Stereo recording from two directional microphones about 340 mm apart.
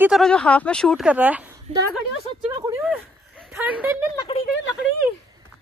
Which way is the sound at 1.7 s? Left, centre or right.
Centre.